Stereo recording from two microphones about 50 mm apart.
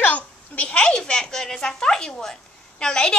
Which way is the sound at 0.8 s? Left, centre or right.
Centre.